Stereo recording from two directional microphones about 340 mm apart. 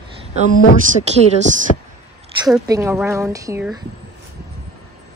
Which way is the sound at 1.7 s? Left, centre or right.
Left.